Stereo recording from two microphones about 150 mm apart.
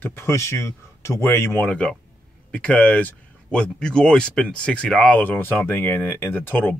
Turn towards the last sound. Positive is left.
turn(degrees=15)  # may be behind; listen again after turning